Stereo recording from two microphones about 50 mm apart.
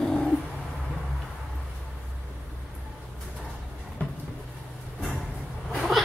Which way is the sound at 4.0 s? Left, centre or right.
Left.